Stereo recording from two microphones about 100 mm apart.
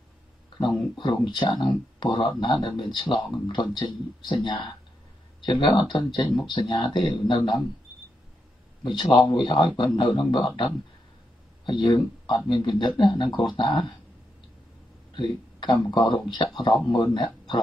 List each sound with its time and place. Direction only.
0.6 s a man's voice: 50° left (ahead or behind)
8.8 s a man's voice: 50° left (ahead or behind)
15.1 s a man's voice: 50° left (ahead or behind)